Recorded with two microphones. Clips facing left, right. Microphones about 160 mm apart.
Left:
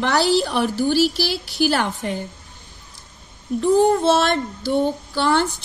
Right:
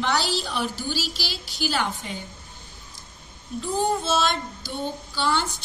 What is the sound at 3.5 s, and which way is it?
Child singing, 65° left (ahead or behind).